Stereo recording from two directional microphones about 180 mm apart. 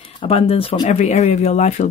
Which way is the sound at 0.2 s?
30° left (ahead or behind).